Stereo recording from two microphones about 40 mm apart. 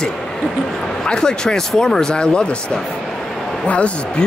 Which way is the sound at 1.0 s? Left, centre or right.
Centre.